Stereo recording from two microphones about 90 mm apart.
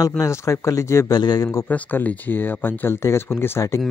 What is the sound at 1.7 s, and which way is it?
Speech, 20° left (ahead or behind).